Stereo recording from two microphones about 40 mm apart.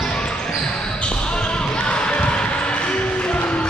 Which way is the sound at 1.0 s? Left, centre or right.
Left.